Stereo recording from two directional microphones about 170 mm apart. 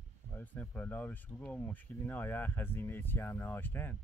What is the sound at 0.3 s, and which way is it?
Speech, 10° left (ahead or behind).